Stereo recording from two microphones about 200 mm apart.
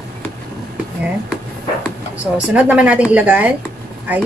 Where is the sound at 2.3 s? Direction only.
5° right (ahead or behind).